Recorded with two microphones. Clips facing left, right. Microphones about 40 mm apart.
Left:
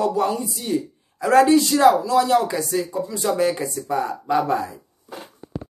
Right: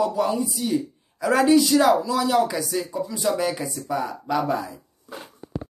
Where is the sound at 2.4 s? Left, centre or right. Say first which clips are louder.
Even; centre.